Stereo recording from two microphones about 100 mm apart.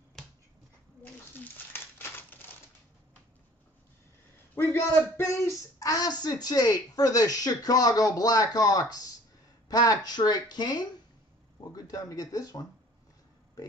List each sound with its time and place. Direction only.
1.3 s crumpling: 20° left (ahead or behind)
4.6 s speech: 25° left (ahead or behind)